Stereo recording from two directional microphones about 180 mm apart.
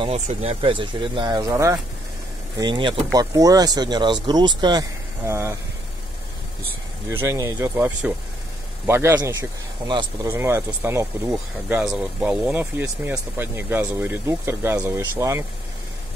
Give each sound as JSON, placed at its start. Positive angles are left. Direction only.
{"t": 0.0, "sound": "speech", "side_deg": -35}
{"t": 7.1, "sound": "speech", "side_deg": -15}
{"t": 10.3, "sound": "speech", "side_deg": -15}
{"t": 11.3, "sound": "speech", "side_deg": -5}